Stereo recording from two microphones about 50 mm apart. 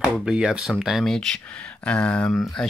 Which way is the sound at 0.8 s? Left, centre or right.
Centre.